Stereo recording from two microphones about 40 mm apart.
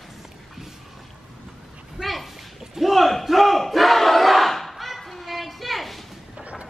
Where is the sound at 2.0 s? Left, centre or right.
Centre.